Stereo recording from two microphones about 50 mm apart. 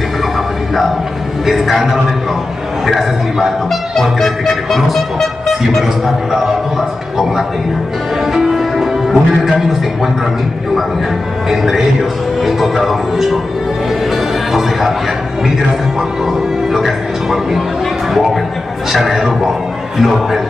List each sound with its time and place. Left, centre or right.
1.4 s music: centre
8.3 s music: centre
11.5 s music: centre
16.3 s music: centre
18.9 s music: centre